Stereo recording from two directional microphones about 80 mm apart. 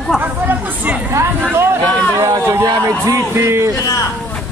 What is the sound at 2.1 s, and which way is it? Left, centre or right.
Speech, right.